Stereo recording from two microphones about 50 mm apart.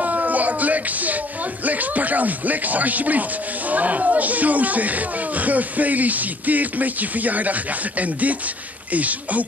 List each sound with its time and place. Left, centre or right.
0.0 s speech: right